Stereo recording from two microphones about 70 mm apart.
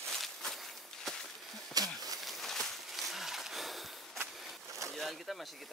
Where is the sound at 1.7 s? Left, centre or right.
Right.